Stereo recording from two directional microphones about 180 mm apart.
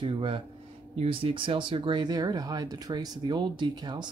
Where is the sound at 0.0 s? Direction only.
30° right (ahead or behind).